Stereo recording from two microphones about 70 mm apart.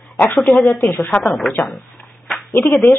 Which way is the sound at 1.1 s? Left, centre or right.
Centre.